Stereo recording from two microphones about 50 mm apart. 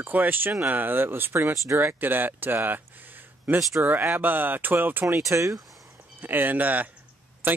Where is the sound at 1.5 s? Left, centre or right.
Right.